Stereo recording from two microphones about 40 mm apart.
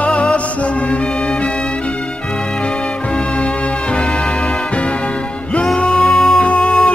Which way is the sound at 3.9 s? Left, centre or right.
Left.